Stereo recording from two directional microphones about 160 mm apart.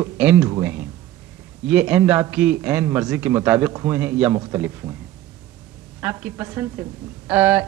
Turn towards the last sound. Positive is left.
turn(degrees=-10)  # may be behind; listen again after turning